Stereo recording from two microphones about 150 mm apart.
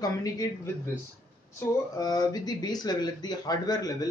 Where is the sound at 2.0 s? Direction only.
25° left (ahead or behind).